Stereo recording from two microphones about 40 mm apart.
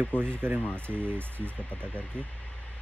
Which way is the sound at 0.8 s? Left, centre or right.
Right.